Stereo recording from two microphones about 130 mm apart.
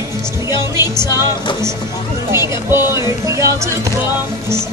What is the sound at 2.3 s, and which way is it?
Music, 20° right (ahead or behind).